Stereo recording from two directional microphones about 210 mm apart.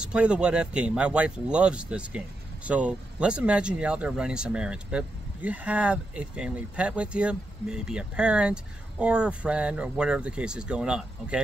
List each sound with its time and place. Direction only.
0.0 s speech: 5° right (ahead or behind)